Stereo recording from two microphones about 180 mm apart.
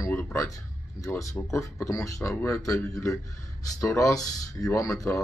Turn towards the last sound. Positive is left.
turn(degrees=15)  # may be behind; listen again after turning